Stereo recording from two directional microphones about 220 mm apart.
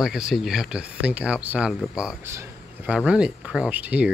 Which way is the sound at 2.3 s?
10° right (ahead or behind).